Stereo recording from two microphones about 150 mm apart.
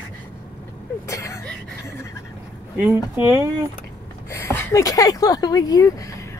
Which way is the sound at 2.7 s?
15° right (ahead or behind).